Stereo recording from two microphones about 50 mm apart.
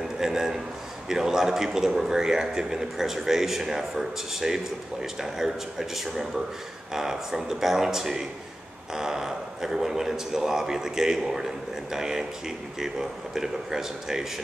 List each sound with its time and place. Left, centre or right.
0.2 s speech: centre